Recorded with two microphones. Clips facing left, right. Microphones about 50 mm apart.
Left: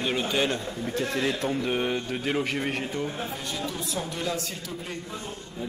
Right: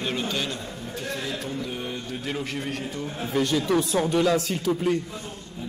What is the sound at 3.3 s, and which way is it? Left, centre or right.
Speech, right.